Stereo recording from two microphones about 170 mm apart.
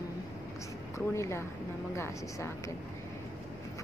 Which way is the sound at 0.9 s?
15° left (ahead or behind).